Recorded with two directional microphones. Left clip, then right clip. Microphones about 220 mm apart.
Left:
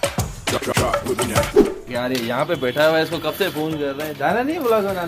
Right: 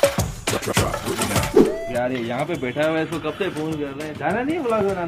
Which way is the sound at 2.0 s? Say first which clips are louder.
Left 3 dB; 30° left (ahead or behind).